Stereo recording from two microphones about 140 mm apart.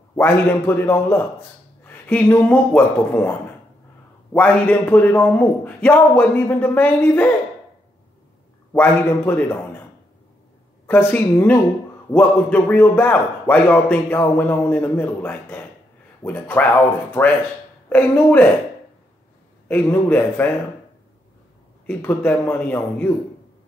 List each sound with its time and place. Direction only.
0.1 s a man's voice: 15° left (ahead or behind)
8.7 s a man's voice: 15° left (ahead or behind)
10.9 s a man's voice: 15° left (ahead or behind)
19.7 s a man's voice: 15° left (ahead or behind)
21.8 s a man's voice: 15° left (ahead or behind)